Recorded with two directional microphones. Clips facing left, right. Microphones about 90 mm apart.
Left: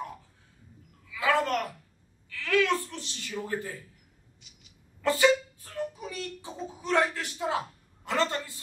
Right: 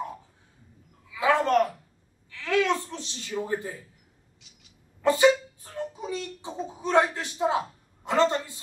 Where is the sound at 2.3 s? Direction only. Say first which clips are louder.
Right 1 dB; 20° right (ahead or behind).